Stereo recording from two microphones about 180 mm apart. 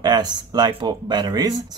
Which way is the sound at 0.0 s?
20° right (ahead or behind).